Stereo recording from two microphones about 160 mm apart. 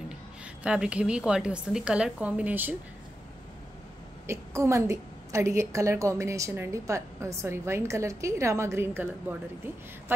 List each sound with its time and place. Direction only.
0.7 s a woman's voice: 5° right (ahead or behind)
4.3 s a woman's voice: 20° right (ahead or behind)